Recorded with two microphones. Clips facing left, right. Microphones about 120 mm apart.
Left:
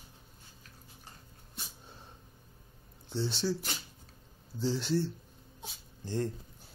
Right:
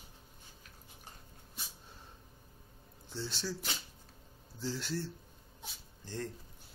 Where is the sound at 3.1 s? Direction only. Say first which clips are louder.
Left 7 dB; 25° left (ahead or behind).